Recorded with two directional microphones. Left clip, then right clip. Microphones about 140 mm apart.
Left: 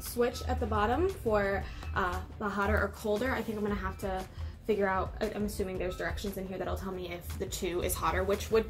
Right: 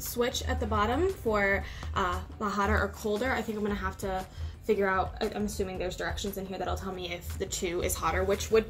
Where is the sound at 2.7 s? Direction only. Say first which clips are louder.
Right 1 dB; 15° right (ahead or behind).